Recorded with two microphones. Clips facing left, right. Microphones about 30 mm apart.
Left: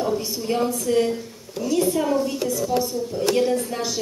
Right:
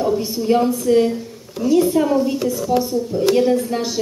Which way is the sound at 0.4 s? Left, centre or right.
Centre.